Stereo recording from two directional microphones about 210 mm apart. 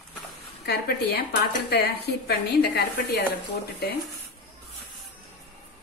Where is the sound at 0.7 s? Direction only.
50° left (ahead or behind).